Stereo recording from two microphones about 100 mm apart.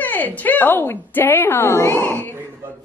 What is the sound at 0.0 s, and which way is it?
A woman's voice, 15° left (ahead or behind).